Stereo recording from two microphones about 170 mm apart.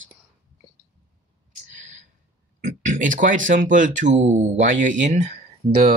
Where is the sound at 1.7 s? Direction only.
50° right (ahead or behind).